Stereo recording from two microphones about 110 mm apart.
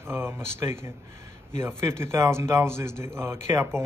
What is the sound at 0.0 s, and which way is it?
Speech, 25° right (ahead or behind).